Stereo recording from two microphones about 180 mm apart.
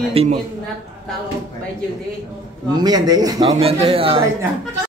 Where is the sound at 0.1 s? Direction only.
35° right (ahead or behind).